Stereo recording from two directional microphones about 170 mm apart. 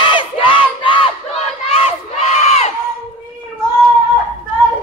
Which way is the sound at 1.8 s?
40° left (ahead or behind).